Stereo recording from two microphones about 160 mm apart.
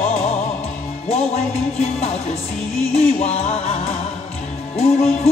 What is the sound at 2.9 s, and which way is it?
Music, 40° left (ahead or behind).